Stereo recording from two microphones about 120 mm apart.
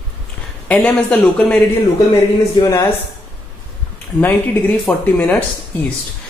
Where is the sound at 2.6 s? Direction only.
25° left (ahead or behind).